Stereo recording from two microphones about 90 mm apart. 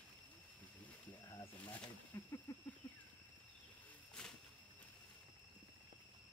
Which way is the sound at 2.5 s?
30° left (ahead or behind).